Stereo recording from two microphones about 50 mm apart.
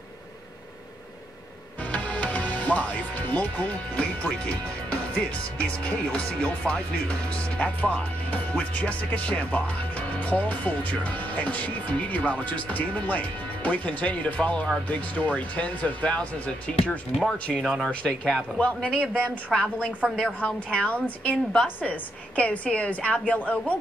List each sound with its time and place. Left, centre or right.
1.9 s speech: left